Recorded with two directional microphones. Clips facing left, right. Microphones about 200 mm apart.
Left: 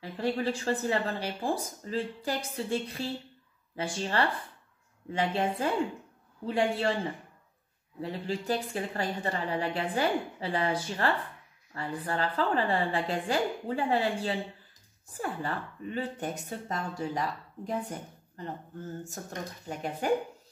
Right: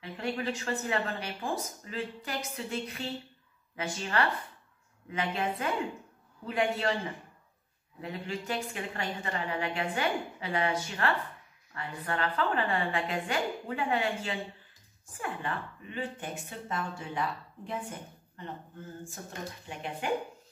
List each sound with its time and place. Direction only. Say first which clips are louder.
0.0 s speech: left 4 dB; 35° left (ahead or behind)
8.0 s speech: left 3 dB; 35° left (ahead or behind)
19.7 s speech: left 5 dB; 40° left (ahead or behind)